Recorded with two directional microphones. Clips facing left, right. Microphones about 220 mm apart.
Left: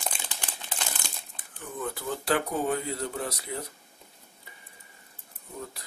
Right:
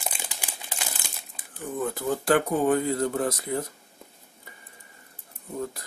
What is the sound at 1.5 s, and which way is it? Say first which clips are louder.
Speech: right 5 dB; 40° right (ahead or behind).